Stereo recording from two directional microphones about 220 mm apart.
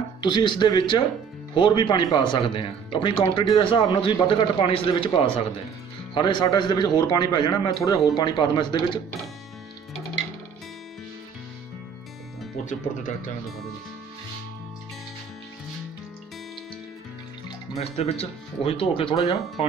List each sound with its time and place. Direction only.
0.2 s speech: 20° left (ahead or behind)
17.5 s speech: 30° left (ahead or behind)